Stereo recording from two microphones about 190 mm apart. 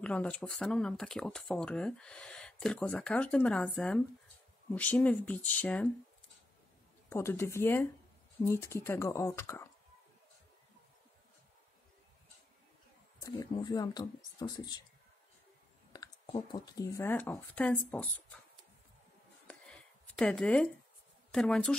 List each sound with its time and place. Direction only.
0.0 s speech: 5° left (ahead or behind)
7.1 s speech: 15° left (ahead or behind)
13.2 s speech: 20° left (ahead or behind)
15.9 s clicking: 20° left (ahead or behind)
16.3 s speech: 25° left (ahead or behind)
19.4 s a sound: 5° left (ahead or behind)
21.3 s speech: 5° left (ahead or behind)